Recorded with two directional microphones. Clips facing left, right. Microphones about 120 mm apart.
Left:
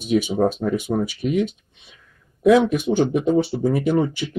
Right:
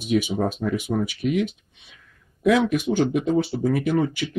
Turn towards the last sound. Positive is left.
turn(degrees=25)  # may be behind; listen again after turning